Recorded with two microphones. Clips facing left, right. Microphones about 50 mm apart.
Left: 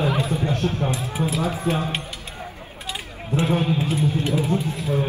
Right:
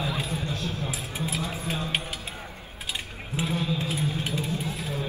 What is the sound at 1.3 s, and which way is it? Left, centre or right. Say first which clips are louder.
Speech: left 8 dB; left.